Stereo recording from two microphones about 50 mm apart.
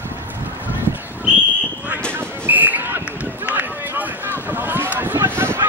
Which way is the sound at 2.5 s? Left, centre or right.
Right.